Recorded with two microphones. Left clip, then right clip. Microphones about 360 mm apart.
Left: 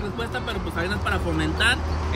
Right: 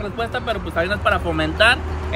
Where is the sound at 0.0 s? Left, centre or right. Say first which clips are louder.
Right 5 dB; centre.